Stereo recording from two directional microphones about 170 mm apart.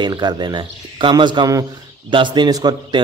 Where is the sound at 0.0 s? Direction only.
25° right (ahead or behind).